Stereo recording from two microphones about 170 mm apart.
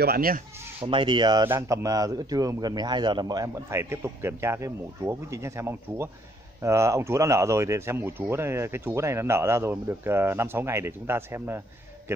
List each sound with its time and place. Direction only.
0.0 s speech: 60° right (ahead or behind)
0.7 s speech: 30° right (ahead or behind); by 11.6 s 15° right (ahead or behind)